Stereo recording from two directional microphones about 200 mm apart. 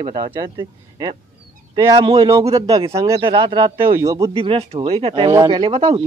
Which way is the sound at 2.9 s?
15° right (ahead or behind).